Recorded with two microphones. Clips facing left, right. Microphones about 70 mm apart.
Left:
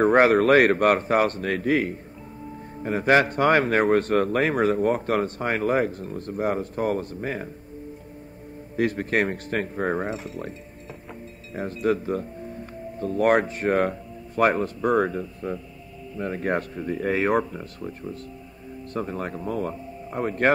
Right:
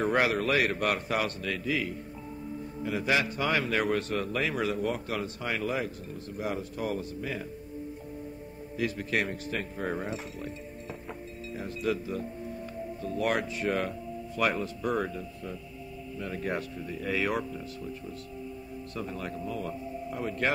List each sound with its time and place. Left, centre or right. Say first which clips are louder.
0.0 s a man's voice: left 9 dB; left
8.7 s a man's voice: left 7 dB; left
10.1 s speech: left 5 dB; centre
11.6 s a man's voice: left 7 dB; left